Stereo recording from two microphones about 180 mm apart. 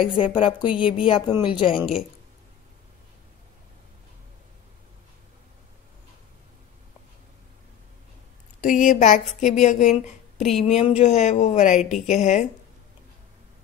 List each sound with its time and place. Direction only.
0.1 s speech: 30° left (ahead or behind)
8.5 s speech: 45° left (ahead or behind)